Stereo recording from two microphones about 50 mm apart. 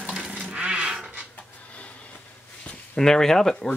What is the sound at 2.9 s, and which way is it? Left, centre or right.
Speech, centre.